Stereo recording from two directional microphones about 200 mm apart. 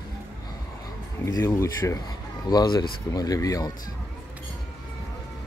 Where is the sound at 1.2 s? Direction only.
15° left (ahead or behind).